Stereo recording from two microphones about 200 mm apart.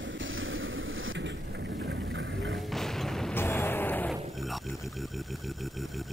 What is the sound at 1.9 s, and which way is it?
Boat, 65° right (ahead or behind).